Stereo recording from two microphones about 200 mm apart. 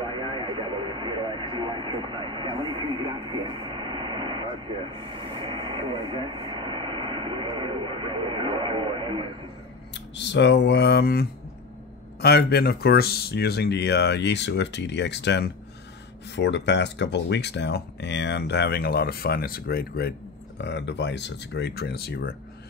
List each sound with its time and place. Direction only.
0.0 s vehicle: 25° right (ahead or behind)
9.9 s speech: 60° left (ahead or behind)